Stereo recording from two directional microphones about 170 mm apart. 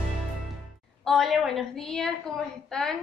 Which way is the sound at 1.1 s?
Centre (ahead or behind).